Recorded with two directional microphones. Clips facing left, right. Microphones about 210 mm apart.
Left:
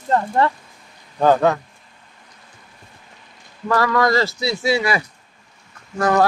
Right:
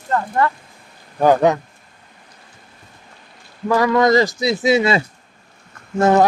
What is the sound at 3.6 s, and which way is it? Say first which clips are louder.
A man's voice: right 3 dB; 15° right (ahead or behind).